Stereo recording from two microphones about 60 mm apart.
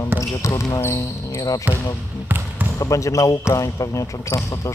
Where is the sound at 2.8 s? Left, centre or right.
Left.